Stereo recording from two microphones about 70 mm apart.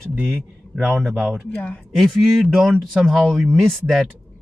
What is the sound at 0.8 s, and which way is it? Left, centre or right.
Speech, centre.